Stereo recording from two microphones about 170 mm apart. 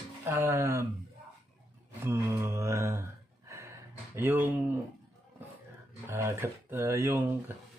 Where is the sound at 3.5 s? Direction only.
15° right (ahead or behind).